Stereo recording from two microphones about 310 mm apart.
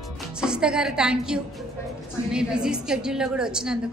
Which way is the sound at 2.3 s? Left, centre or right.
Centre.